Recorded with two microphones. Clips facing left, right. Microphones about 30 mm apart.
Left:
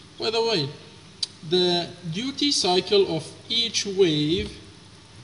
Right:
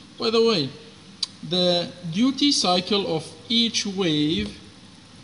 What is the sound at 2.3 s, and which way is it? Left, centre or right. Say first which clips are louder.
Speech: left 2 dB; right.